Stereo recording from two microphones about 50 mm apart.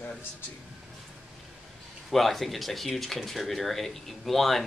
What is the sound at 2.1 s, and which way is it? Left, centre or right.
Speech, centre.